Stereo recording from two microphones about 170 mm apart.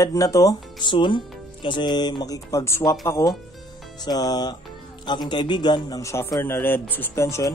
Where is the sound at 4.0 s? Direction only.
25° left (ahead or behind).